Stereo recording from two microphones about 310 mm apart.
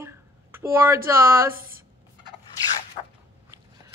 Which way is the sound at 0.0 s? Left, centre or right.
Centre.